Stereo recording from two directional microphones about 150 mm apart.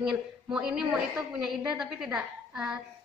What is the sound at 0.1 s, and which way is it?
A woman's voice, 5° right (ahead or behind).